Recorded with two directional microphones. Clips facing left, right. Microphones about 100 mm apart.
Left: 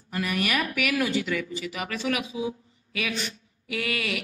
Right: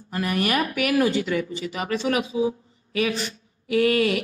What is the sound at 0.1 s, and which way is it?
A woman's voice, 35° right (ahead or behind).